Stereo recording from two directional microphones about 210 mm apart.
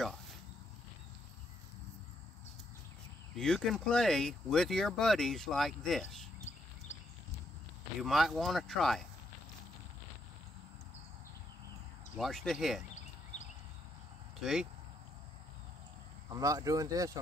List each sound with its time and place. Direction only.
3.3 s speech: centre (ahead or behind)
6.5 s a sound: 35° left (ahead or behind)
8.0 s speech: centre (ahead or behind)
12.2 s speech: centre (ahead or behind)
14.4 s speech: centre (ahead or behind)
16.3 s speech: 15° right (ahead or behind)